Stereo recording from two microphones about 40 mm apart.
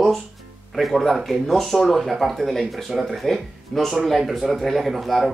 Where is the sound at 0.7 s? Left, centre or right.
Centre.